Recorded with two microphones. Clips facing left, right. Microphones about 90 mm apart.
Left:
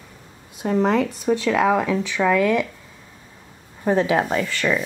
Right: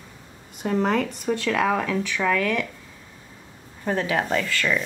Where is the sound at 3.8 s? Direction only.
20° left (ahead or behind).